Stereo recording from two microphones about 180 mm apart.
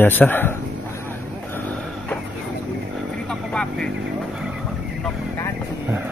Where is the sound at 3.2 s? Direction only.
5° left (ahead or behind).